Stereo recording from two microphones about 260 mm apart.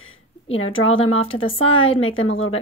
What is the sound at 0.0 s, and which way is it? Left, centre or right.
Speech, left.